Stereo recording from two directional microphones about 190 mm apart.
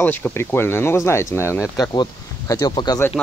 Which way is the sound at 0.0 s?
10° left (ahead or behind).